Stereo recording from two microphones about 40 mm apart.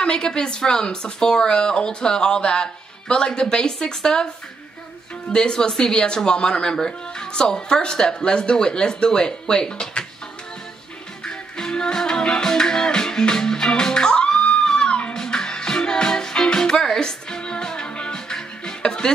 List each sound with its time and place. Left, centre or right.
0.0 s a woman's voice: left
5.3 s a woman's voice: left
11.2 s music: centre
18.8 s speech: centre